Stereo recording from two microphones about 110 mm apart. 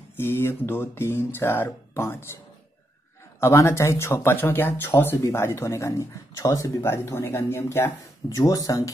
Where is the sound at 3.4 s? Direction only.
25° left (ahead or behind).